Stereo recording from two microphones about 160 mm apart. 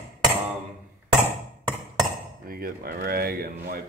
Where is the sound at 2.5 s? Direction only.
65° right (ahead or behind).